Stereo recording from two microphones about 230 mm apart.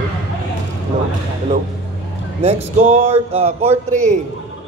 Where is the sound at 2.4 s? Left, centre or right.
Right.